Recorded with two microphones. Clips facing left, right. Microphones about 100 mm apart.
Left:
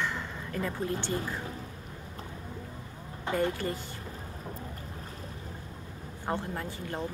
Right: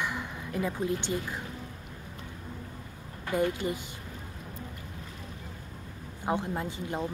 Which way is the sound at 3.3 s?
25° left (ahead or behind).